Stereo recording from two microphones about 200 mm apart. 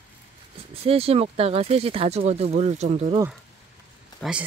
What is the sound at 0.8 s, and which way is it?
Speech, 30° right (ahead or behind).